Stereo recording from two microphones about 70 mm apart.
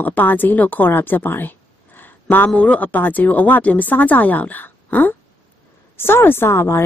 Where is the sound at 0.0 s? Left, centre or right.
Left.